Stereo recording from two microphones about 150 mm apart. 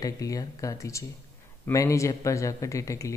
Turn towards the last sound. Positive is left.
turn(degrees=20)  # may be behind; listen again after turning